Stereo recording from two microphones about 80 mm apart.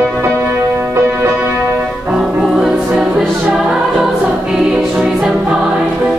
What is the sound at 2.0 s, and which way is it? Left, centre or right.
Music, centre.